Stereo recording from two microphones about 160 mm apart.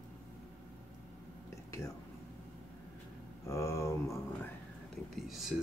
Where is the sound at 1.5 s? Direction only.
20° left (ahead or behind).